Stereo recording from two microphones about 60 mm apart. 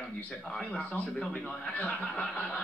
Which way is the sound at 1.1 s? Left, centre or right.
Centre.